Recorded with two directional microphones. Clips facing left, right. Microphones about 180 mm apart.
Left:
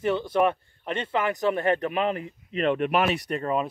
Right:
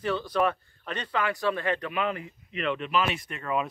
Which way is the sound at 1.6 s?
45° left (ahead or behind).